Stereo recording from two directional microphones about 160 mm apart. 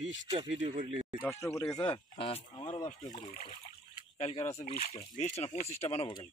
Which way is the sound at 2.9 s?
50° left (ahead or behind).